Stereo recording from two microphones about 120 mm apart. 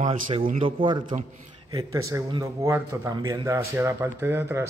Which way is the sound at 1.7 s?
30° right (ahead or behind).